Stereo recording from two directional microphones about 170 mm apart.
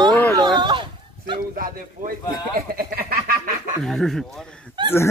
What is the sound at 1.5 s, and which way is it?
Speech, 55° right (ahead or behind).